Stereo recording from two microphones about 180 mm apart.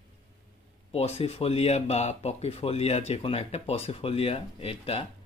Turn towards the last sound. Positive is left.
turn(degrees=30)  # may be behind; listen again after turning